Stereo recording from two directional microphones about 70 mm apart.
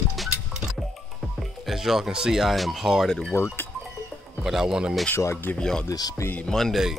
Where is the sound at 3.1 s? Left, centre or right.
Centre.